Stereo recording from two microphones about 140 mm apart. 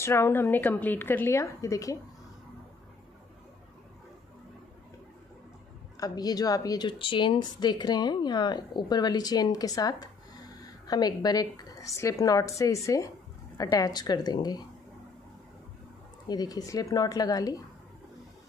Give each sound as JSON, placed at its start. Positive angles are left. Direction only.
{"t": 0.0, "sound": "a woman's voice", "side_deg": 20}
{"t": 5.9, "sound": "speech", "side_deg": 25}
{"t": 16.3, "sound": "speech", "side_deg": 25}